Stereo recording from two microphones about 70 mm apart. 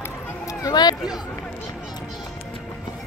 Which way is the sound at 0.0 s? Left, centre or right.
Left.